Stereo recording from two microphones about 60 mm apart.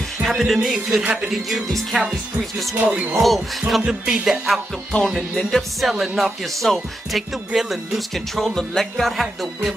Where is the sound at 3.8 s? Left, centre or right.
Centre.